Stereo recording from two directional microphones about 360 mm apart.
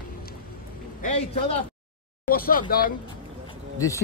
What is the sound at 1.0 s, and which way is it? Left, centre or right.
A man's voice, centre.